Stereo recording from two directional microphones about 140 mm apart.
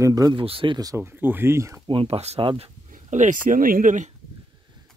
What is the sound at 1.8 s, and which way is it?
Speech, 45° right (ahead or behind).